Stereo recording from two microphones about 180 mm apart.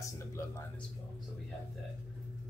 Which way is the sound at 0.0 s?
15° left (ahead or behind).